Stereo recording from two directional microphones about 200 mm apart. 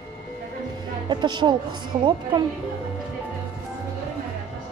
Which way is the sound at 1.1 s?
20° right (ahead or behind).